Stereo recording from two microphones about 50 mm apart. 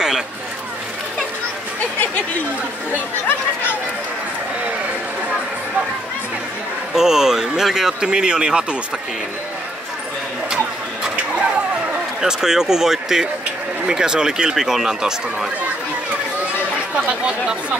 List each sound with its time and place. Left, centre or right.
2.9 s chatter: left
6.9 s speech: centre
12.2 s speech: centre